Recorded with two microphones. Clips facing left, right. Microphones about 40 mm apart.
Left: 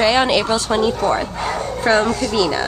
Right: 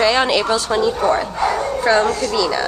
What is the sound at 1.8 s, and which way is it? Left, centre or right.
Speech, centre.